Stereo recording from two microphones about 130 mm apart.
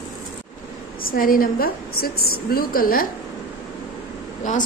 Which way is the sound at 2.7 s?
90° left.